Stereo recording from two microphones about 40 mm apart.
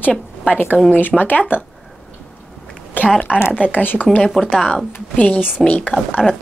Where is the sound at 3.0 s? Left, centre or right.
Left.